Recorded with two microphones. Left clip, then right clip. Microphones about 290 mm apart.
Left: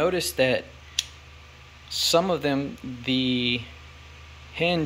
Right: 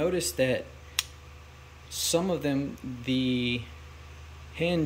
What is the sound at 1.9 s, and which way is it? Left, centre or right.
Speech, centre.